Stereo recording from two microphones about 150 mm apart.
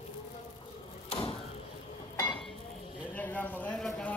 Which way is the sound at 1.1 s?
40° left (ahead or behind).